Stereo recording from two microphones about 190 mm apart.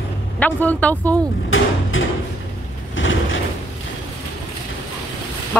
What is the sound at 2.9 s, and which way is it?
Vehicle, 90° left.